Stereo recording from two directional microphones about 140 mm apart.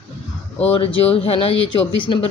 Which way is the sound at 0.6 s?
40° left (ahead or behind).